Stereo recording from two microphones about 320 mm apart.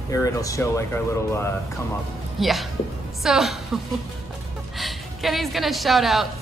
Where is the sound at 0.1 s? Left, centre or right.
Centre.